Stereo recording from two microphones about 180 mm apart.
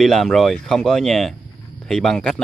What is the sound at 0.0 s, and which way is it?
Speech, centre (ahead or behind).